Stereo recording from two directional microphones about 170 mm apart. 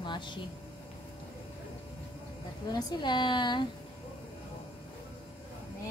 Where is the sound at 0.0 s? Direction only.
25° left (ahead or behind).